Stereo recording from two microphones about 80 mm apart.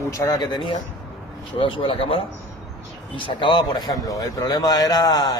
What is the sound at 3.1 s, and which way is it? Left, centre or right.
Speech, left.